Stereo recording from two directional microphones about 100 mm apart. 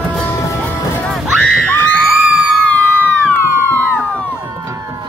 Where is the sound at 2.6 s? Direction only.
15° left (ahead or behind).